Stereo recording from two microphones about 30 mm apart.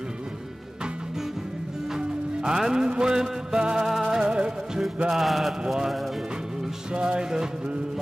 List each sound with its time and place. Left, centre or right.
2.0 s music: right
3.7 s music: centre
4.2 s music: right
5.1 s speech: centre
6.9 s music: right